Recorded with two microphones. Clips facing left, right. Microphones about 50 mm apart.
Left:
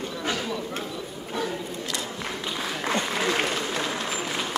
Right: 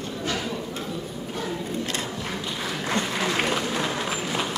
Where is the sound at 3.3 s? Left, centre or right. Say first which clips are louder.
Right 2 dB; centre.